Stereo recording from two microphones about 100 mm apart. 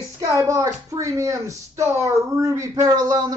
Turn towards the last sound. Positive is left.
turn(degrees=-40)  # may be behind; listen again after turning